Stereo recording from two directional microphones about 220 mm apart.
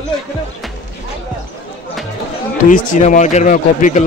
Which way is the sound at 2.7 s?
35° left (ahead or behind).